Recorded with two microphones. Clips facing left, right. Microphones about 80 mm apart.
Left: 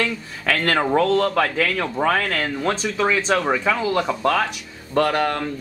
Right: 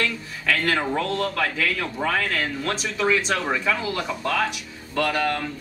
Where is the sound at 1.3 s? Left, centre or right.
Left.